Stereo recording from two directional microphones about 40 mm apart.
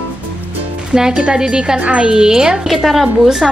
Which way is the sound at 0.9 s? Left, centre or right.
Centre.